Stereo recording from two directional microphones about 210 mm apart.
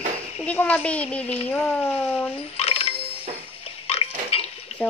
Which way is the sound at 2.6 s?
30° left (ahead or behind).